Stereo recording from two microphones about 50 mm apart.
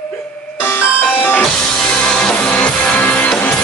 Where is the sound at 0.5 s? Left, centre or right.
Left.